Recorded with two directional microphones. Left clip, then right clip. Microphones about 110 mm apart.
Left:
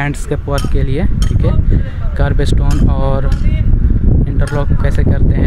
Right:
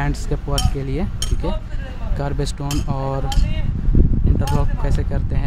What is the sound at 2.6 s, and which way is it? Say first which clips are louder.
Speech: left 6 dB; 15° left (ahead or behind).